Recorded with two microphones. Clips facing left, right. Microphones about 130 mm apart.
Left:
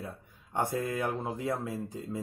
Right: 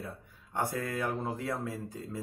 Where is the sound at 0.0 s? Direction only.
20° left (ahead or behind).